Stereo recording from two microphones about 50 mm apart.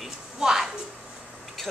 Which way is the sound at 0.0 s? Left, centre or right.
Centre.